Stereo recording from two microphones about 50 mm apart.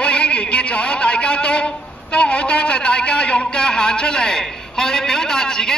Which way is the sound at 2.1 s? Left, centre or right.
Left.